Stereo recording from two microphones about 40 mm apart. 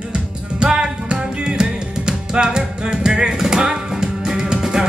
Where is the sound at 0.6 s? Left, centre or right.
Right.